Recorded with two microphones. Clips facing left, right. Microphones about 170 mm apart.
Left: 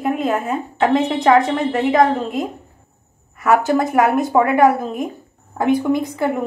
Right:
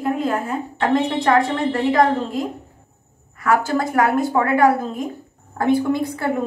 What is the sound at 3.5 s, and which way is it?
A woman's voice, 20° left (ahead or behind).